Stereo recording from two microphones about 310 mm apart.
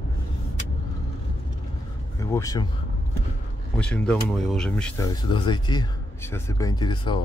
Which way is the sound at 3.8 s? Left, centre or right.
Centre.